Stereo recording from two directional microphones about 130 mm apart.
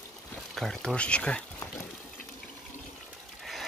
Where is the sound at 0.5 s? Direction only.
5° left (ahead or behind).